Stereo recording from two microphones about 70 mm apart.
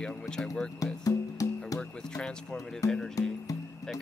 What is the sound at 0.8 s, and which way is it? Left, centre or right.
Speech, left.